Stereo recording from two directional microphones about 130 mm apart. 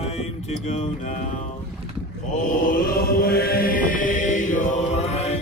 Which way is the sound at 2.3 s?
90° left.